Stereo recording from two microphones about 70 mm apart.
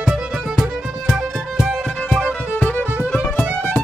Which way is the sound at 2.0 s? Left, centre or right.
Centre.